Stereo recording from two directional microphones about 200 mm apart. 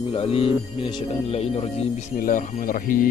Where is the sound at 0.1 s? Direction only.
30° left (ahead or behind).